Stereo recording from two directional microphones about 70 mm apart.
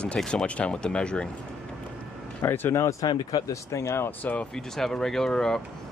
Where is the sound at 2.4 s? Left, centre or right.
Left.